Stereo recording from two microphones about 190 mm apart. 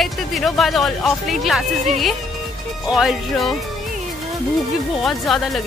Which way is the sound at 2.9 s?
Centre (ahead or behind).